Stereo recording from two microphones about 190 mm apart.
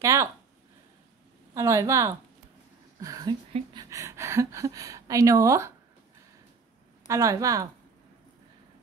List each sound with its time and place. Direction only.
0.0 s speech: 15° right (ahead or behind)
1.5 s speech: 15° right (ahead or behind)
7.1 s speech: 15° right (ahead or behind)